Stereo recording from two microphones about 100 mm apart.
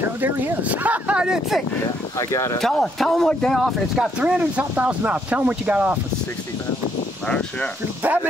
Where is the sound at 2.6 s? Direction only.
5° left (ahead or behind); by 6.0 s 15° right (ahead or behind).